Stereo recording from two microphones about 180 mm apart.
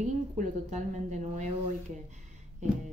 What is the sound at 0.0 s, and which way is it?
A woman's voice, 40° right (ahead or behind).